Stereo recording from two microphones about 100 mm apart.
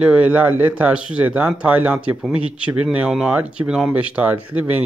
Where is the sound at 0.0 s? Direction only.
15° right (ahead or behind).